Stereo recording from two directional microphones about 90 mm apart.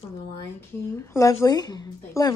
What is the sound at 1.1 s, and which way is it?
Speech, 30° left (ahead or behind).